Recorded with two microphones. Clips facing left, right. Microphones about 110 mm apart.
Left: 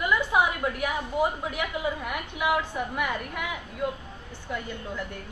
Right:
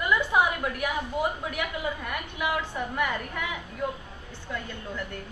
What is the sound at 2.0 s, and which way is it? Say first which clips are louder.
A woman's voice: left 3 dB; 15° left (ahead or behind).